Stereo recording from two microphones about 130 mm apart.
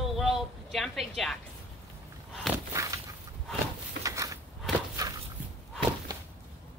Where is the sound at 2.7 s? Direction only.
25° right (ahead or behind).